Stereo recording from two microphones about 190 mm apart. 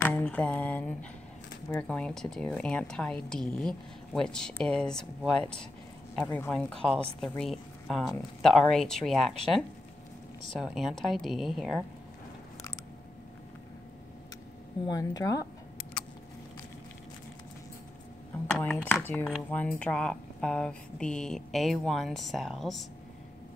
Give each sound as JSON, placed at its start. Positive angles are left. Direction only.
{"t": 0.0, "sound": "a sound", "side_deg": 5}
{"t": 1.8, "sound": "a woman's voice", "side_deg": 5}
{"t": 14.9, "sound": "speech", "side_deg": 20}
{"t": 18.5, "sound": "a woman's voice", "side_deg": 5}